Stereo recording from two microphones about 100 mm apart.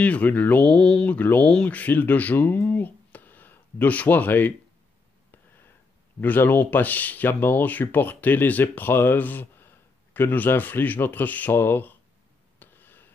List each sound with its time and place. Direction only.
0.0 s speech: 15° left (ahead or behind)
6.2 s speech: 20° left (ahead or behind)
12.5 s a sound: 20° left (ahead or behind)